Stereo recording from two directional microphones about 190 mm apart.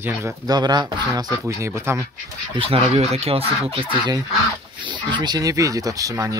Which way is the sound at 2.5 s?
30° right (ahead or behind).